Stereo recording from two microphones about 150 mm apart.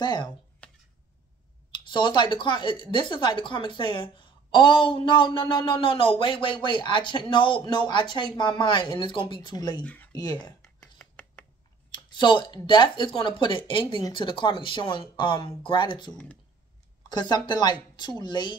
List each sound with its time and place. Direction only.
0.0 s speech: 30° left (ahead or behind)
0.6 s a sound: 10° left (ahead or behind)
1.9 s speech: 30° left (ahead or behind)
9.8 s a sound: 10° left (ahead or behind)
10.8 s finger snapping: 5° left (ahead or behind)
11.9 s speech: 30° left (ahead or behind)
17.1 s speech: 30° left (ahead or behind)